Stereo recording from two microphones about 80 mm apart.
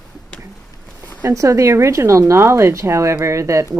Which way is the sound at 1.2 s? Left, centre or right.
Right.